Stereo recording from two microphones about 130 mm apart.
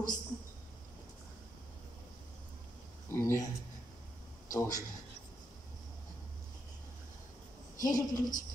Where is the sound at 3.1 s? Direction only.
20° left (ahead or behind).